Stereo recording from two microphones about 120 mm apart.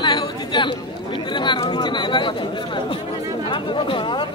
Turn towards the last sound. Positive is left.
turn(degrees=45)  # may be behind; listen again after turning